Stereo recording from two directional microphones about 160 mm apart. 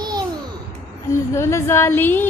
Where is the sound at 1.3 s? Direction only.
15° left (ahead or behind).